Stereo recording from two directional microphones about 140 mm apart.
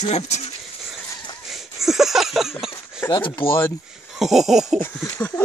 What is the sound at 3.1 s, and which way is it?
Speech, 35° left (ahead or behind).